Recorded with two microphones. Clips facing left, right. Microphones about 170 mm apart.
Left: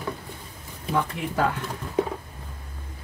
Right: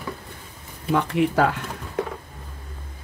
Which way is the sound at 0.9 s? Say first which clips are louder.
Right 6 dB; 75° right (ahead or behind).